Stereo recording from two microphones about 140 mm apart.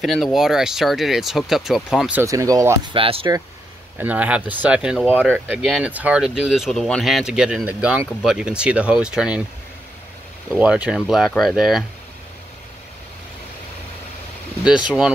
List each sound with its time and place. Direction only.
0.0 s speech: centre (ahead or behind)
2.2 s speech: 25° right (ahead or behind)
2.9 s speech: 40° right (ahead or behind)
4.0 s speech: 10° right (ahead or behind)
10.5 s speech: 10° right (ahead or behind)